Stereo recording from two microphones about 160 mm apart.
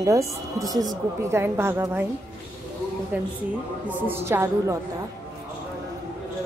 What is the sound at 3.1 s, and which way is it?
A woman's voice, 10° right (ahead or behind).